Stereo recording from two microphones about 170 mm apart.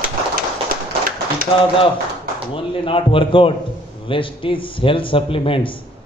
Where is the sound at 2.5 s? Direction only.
30° left (ahead or behind).